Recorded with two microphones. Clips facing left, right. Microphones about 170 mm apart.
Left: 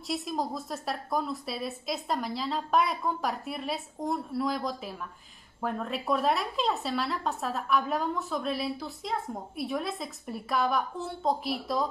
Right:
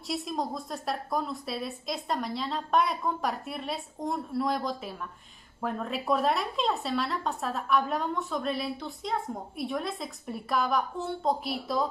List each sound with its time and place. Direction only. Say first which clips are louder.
0.1 s a woman's voice: even; centre (ahead or behind)